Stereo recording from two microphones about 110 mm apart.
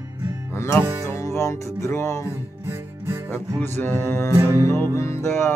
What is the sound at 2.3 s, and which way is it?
Music, 20° right (ahead or behind).